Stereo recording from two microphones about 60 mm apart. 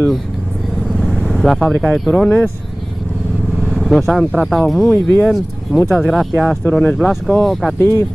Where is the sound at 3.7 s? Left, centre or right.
Centre.